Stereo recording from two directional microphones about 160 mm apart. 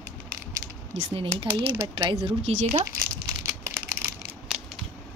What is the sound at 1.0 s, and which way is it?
Speech, 35° right (ahead or behind).